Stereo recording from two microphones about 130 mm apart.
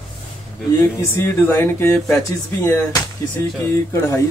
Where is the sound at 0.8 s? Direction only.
20° left (ahead or behind).